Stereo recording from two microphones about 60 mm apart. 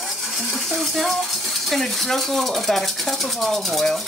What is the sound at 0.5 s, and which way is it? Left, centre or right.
Speech, centre.